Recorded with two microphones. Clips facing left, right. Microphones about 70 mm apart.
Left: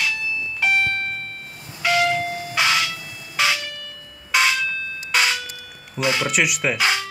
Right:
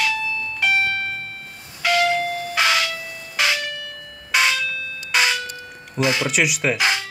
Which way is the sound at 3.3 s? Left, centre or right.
Centre.